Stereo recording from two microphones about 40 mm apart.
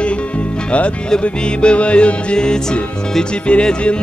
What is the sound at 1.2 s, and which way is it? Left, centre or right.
Music, left.